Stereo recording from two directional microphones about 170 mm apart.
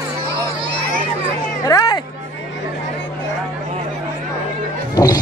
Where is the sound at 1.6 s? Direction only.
20° left (ahead or behind).